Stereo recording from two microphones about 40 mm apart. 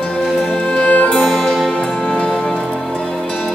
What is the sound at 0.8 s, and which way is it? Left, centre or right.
Music, left.